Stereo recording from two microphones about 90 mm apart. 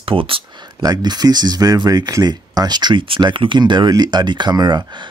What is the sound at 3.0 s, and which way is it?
Speech, 75° right (ahead or behind).